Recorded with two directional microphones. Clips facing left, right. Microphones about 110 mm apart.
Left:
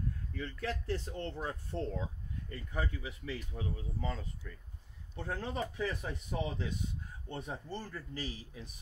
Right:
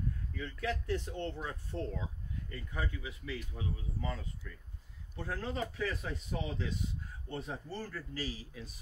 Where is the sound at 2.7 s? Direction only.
30° left (ahead or behind).